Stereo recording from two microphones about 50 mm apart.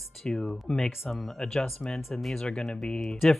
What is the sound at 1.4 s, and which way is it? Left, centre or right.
Speech, centre.